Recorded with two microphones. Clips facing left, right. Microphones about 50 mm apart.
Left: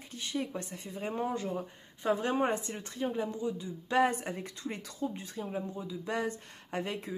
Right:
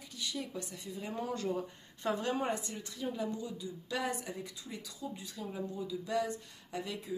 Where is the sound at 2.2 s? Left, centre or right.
Left.